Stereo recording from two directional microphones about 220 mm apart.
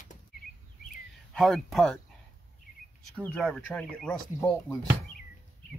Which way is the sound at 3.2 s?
5° left (ahead or behind).